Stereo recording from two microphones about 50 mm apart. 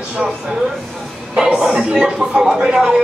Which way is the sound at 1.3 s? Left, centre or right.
Centre.